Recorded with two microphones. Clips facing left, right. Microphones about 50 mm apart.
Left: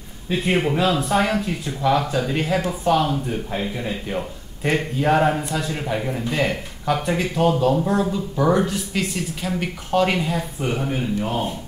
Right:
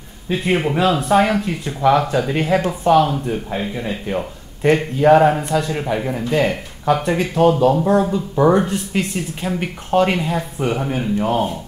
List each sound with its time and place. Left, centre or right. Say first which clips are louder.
0.3 s speech: right 2 dB; centre
0.7 s speech: right 4 dB; right; by 4.3 s centre
4.7 s speech: right 6 dB; right
5.4 s speech: right 6 dB; right
5.8 s speech: right 4 dB; centre
7.1 s speech: right 4 dB; right